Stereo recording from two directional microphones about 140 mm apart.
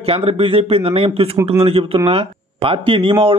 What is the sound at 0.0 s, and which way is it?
A man's voice, 45° right (ahead or behind).